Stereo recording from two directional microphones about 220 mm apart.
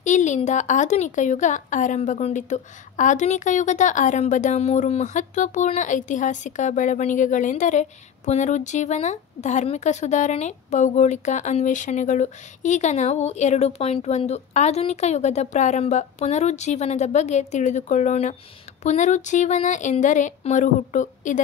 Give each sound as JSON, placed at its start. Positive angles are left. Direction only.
{"t": 0.0, "sound": "speech", "side_deg": 35}